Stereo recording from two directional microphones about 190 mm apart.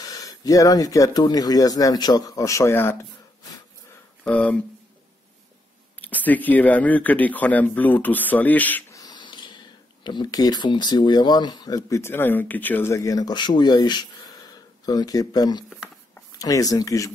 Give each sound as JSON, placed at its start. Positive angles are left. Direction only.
{"t": 0.0, "sound": "speech", "side_deg": 20}
{"t": 4.2, "sound": "speech", "side_deg": 5}
{"t": 5.9, "sound": "speech", "side_deg": 10}